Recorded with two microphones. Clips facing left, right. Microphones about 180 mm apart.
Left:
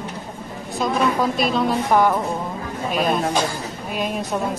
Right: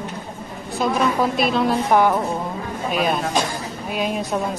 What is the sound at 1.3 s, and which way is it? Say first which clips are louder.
Speech: right 1 dB; centre (ahead or behind).